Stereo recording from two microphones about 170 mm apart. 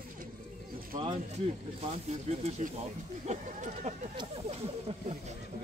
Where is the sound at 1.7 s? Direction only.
40° right (ahead or behind).